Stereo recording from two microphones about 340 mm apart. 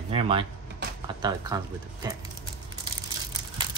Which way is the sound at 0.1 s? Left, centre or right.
Centre.